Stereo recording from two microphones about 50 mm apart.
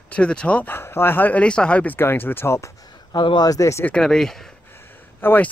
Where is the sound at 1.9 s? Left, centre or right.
Left.